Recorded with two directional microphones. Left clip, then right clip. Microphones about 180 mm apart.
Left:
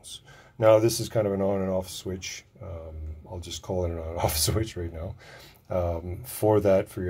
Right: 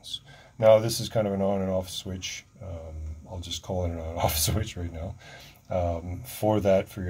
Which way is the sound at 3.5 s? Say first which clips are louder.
Left 1 dB; 25° left (ahead or behind).